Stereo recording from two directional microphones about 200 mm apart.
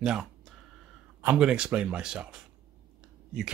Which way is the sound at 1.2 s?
5° right (ahead or behind).